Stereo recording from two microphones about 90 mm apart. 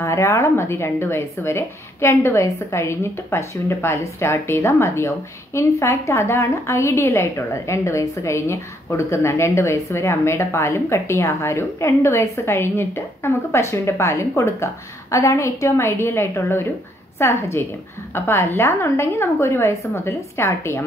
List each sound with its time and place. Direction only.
0.0 s a woman's voice: 35° left (ahead or behind)